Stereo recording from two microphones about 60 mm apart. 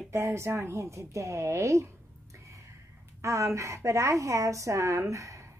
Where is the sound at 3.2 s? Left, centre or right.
Right.